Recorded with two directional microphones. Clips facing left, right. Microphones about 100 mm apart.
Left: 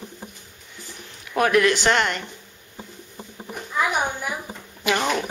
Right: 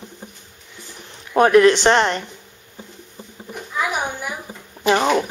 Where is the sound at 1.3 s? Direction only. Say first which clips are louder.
Right 6 dB; 30° right (ahead or behind).